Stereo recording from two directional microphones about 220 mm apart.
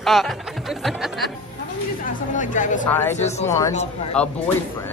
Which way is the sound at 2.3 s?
35° left (ahead or behind).